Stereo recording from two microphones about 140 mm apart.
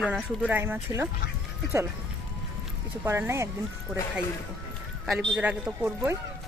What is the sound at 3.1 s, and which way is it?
Speech, 20° right (ahead or behind).